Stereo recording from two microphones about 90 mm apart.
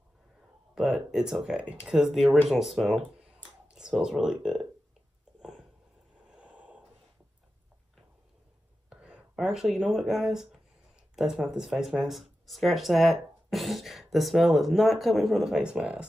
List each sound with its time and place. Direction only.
0.7 s speech: 5° right (ahead or behind)
3.2 s clicking: 10° right (ahead or behind)
5.4 s a sound: 5° right (ahead or behind)
8.9 s speech: 10° right (ahead or behind)